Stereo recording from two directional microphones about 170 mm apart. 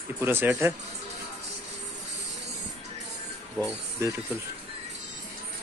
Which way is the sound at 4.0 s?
15° right (ahead or behind).